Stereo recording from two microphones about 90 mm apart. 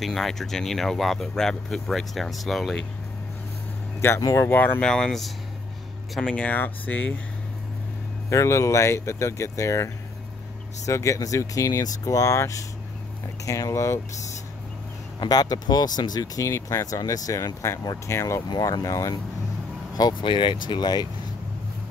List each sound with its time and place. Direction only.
0.0 s speech: centre (ahead or behind)
4.2 s speech: 35° left (ahead or behind)
4.5 s speech: 20° left (ahead or behind)
4.8 s speech: 5° left (ahead or behind)
8.3 s speech: 35° left (ahead or behind)
10.9 s speech: 35° left (ahead or behind)
15.1 s speech: 45° left (ahead or behind)
16.4 s speech: 35° left (ahead or behind)
18.5 s speech: 40° left (ahead or behind)
20.0 s speech: 55° left (ahead or behind)